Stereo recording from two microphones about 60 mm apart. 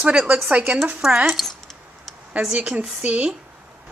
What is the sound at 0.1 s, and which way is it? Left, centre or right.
Speech, centre.